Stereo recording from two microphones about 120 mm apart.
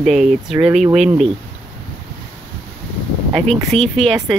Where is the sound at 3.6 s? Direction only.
Centre (ahead or behind).